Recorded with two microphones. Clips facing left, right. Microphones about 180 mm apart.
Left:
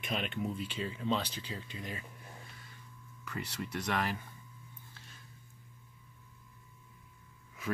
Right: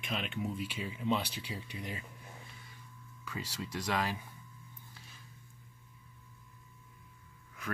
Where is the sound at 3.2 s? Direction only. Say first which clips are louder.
Left 1 dB; 10° right (ahead or behind).